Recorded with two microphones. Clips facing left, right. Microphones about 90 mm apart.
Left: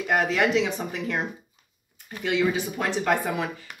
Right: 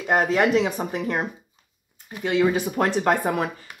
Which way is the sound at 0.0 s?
35° right (ahead or behind).